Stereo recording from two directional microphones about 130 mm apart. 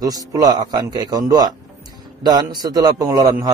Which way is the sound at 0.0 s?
30° right (ahead or behind).